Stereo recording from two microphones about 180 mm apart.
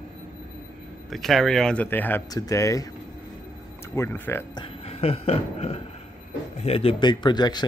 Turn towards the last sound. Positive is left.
turn(degrees=25)  # may be behind; listen again after turning